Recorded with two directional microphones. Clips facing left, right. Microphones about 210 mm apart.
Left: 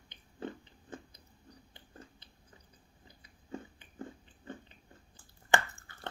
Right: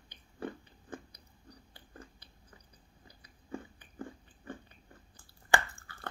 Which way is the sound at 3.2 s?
20° left (ahead or behind).